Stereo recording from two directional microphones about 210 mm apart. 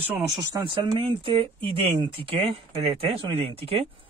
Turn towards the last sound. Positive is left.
turn(degrees=-25)  # may be behind; listen again after turning